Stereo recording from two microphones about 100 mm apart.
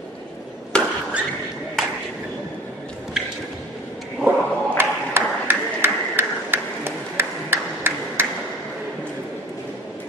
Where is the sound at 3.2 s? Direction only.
5° right (ahead or behind).